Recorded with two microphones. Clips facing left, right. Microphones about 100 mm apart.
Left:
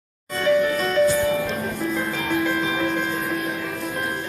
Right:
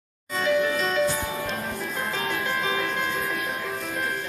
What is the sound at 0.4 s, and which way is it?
Music, 45° left (ahead or behind).